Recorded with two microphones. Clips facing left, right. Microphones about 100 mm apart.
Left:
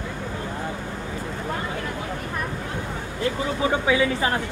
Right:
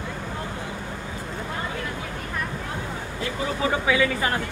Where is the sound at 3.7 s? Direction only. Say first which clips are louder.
Left 1 dB; 20° left (ahead or behind).